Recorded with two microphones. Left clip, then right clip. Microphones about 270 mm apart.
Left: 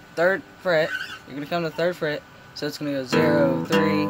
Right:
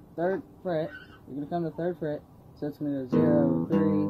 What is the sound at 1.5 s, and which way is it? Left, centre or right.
Speech, left.